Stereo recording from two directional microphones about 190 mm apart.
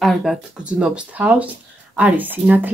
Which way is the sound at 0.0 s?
Centre (ahead or behind).